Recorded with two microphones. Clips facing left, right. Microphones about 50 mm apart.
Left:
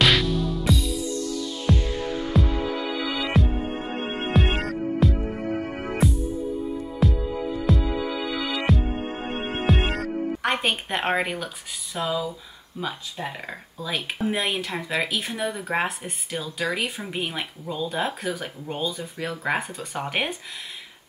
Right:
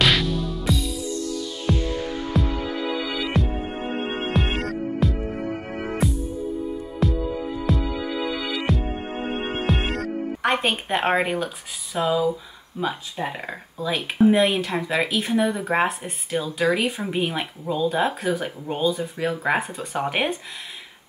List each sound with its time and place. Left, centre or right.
0.0 s music: centre
9.7 s speech: centre
12.8 s speech: centre
13.5 s speech: centre